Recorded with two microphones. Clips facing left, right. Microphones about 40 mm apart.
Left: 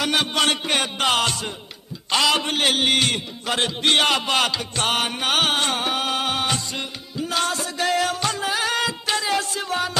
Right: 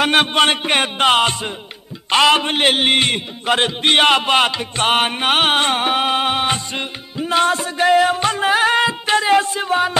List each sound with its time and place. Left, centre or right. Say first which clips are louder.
0.0 s a man's voice: right 6 dB; right